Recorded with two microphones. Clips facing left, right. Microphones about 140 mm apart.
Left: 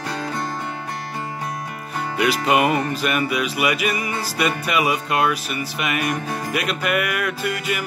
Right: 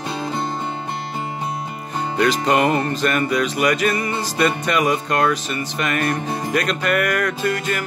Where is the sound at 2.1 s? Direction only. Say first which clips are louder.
Right 1 dB; 10° left (ahead or behind).